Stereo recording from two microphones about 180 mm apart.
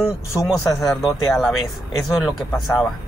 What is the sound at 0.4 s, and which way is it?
Speech, centre (ahead or behind).